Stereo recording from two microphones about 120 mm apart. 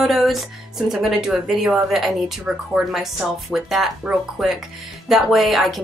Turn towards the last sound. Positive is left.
turn(degrees=0)  # may be behind; listen again after turning